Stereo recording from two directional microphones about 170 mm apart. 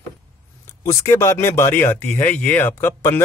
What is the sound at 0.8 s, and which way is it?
Speech, 15° left (ahead or behind).